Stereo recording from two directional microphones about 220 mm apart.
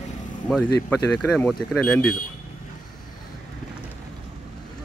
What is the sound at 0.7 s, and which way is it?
Speech, 10° left (ahead or behind).